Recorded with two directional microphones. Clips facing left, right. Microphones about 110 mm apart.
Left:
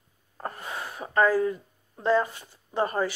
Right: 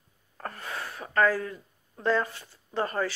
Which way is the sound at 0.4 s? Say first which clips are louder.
Left 2 dB; 20° left (ahead or behind).